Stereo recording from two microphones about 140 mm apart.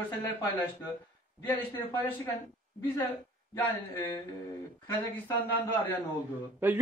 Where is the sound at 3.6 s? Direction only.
15° left (ahead or behind).